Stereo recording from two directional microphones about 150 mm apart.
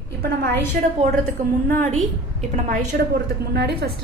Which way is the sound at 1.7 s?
65° right (ahead or behind).